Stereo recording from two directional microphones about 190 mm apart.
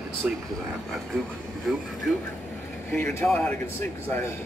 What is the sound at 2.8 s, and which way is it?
Speech, 10° left (ahead or behind).